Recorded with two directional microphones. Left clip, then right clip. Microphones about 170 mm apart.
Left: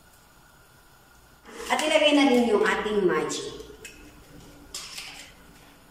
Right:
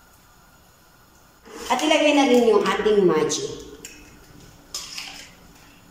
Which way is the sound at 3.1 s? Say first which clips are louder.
Right 5 dB; 20° right (ahead or behind).